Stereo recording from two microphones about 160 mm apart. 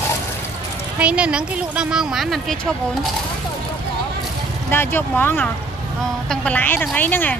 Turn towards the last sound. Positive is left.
turn(degrees=10)  # may be behind; listen again after turning